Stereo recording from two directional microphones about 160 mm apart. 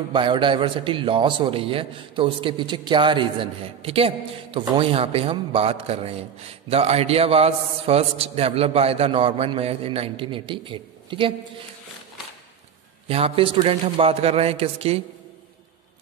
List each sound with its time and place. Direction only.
0.1 s a man's voice: 30° right (ahead or behind)
13.1 s a man's voice: 35° right (ahead or behind)